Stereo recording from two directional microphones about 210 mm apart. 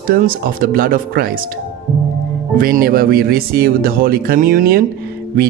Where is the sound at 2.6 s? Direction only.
45° right (ahead or behind).